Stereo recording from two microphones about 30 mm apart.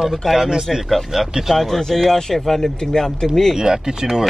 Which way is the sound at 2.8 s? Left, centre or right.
Centre.